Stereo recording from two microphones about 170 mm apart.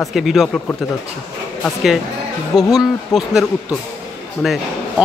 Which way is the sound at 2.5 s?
20° left (ahead or behind).